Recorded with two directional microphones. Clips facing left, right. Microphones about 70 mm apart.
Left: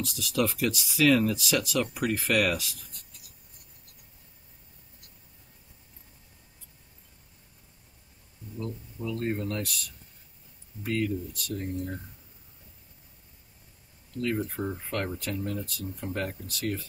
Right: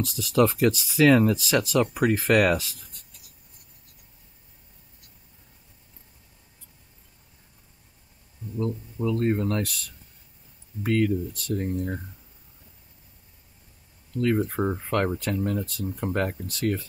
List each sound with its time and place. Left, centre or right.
0.0 s speech: right
8.5 s speech: right
10.8 s speech: right
14.2 s speech: right